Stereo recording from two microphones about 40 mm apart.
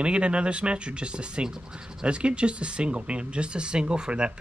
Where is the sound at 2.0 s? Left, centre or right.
Right.